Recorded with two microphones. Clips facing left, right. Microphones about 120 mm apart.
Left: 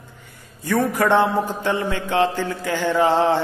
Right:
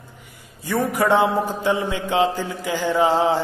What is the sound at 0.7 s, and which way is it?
Mantra, 15° right (ahead or behind).